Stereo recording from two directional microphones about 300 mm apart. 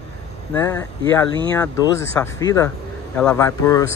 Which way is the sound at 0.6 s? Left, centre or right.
Centre.